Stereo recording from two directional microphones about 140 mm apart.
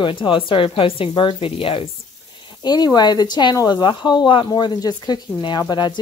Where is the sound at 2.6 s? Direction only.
30° left (ahead or behind).